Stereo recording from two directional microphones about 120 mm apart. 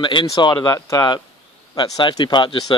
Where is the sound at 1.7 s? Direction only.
40° left (ahead or behind).